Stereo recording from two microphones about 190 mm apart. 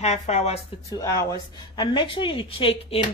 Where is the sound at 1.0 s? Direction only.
15° left (ahead or behind).